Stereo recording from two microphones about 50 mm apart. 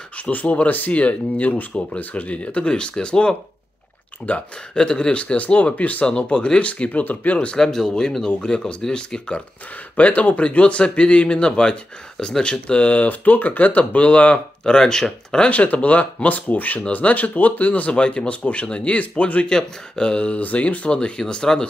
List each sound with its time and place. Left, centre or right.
0.2 s a man's voice: left
4.7 s a man's voice: centre
9.9 s a man's voice: left
14.6 s speech: centre
15.4 s speech: left
17.9 s a man's voice: centre
19.5 s a man's voice: centre